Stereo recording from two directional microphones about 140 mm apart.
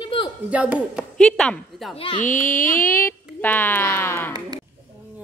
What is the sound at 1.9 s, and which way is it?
Speech, 40° left (ahead or behind).